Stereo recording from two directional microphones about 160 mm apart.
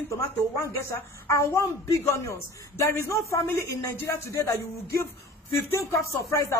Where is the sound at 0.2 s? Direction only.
15° left (ahead or behind).